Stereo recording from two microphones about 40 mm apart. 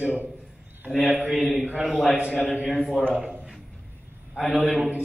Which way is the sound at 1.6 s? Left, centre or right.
Right.